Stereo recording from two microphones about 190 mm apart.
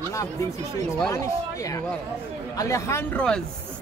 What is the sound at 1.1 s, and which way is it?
A woman's voice, 15° left (ahead or behind).